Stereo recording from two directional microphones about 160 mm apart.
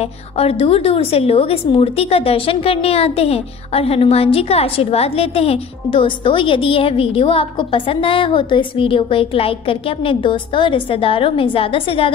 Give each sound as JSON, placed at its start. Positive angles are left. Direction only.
{"t": 0.0, "sound": "a woman's voice", "side_deg": 40}